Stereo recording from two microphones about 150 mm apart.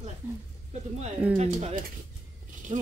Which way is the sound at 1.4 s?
50° right (ahead or behind).